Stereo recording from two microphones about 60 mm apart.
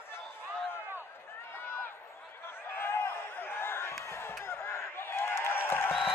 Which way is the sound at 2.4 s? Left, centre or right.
Left.